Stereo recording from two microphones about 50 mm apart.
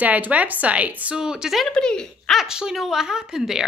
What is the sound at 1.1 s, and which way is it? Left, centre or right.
Speech, centre.